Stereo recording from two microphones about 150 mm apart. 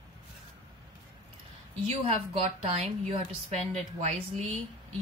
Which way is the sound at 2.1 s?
45° right (ahead or behind).